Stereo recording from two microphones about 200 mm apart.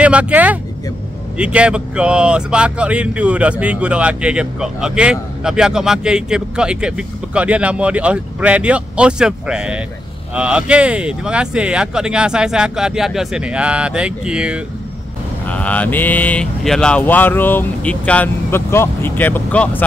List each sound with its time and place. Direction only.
0.0 s speech: 5° right (ahead or behind)
15.4 s speech: 5° left (ahead or behind)